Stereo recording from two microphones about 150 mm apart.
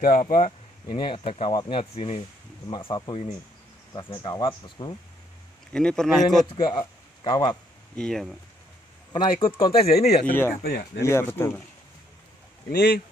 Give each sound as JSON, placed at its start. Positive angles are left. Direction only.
{"t": 0.0, "sound": "speech", "side_deg": 65}
{"t": 0.8, "sound": "speech", "side_deg": 30}
{"t": 5.7, "sound": "speech", "side_deg": 5}
{"t": 6.5, "sound": "speech", "side_deg": 30}
{"t": 7.9, "sound": "speech", "side_deg": 5}
{"t": 9.1, "sound": "speech", "side_deg": 35}
{"t": 10.5, "sound": "speech", "side_deg": 85}
{"t": 11.0, "sound": "speech", "side_deg": 20}
{"t": 12.6, "sound": "speech", "side_deg": 90}